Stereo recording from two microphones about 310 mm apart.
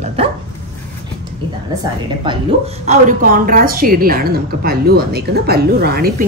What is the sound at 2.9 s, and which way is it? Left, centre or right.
A woman's voice, right.